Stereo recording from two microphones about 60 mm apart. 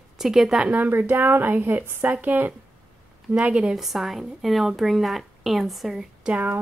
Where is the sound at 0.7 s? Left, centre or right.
Right.